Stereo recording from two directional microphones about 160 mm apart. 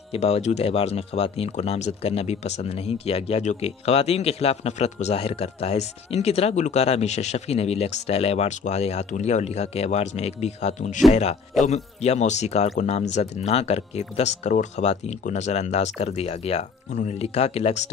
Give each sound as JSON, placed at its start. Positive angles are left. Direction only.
{"t": 0.1, "sound": "speech", "side_deg": 40}